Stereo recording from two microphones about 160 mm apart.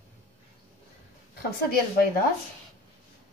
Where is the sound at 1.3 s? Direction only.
70° left (ahead or behind).